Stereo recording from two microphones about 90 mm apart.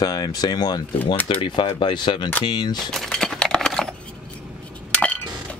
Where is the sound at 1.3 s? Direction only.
70° left (ahead or behind).